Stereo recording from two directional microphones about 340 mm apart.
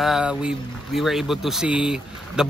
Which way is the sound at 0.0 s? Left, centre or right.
Centre.